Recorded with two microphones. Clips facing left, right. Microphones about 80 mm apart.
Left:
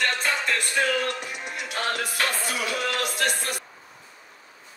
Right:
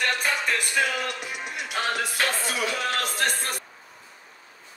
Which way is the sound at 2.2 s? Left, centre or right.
Right.